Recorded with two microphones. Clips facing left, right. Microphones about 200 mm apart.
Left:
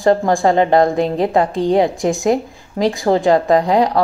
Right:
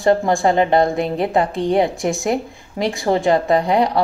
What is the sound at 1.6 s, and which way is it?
Speech, 15° left (ahead or behind).